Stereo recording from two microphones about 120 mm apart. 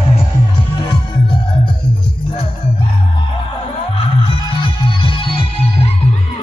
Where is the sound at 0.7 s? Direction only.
40° left (ahead or behind).